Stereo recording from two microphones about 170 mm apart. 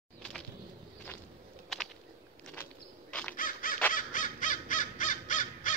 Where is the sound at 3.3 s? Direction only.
55° left (ahead or behind).